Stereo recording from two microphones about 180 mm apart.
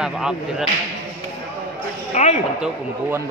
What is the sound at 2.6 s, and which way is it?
Speech, 10° right (ahead or behind).